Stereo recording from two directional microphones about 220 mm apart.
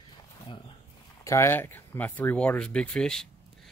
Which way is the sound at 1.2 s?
15° left (ahead or behind).